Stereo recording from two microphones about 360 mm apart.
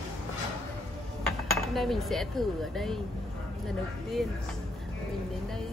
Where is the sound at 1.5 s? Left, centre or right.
Centre.